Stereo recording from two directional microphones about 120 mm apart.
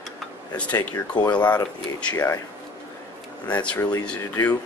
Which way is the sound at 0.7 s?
35° left (ahead or behind).